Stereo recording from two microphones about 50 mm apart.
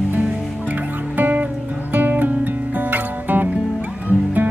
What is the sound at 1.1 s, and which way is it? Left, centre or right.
Music, right.